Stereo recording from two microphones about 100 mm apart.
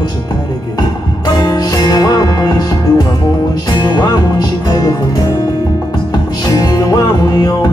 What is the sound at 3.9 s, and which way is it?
Music, 40° left (ahead or behind).